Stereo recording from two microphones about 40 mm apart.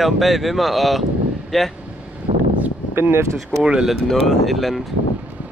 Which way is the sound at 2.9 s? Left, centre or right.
Right.